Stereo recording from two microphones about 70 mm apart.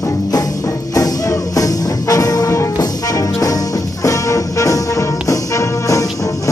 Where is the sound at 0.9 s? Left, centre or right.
Left.